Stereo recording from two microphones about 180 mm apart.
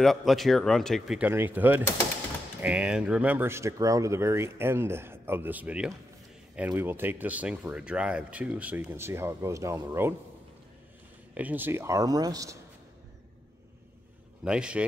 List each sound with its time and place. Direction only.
0.0 s speech: centre (ahead or behind)
11.3 s speech: 10° right (ahead or behind)
14.4 s speech: 5° right (ahead or behind)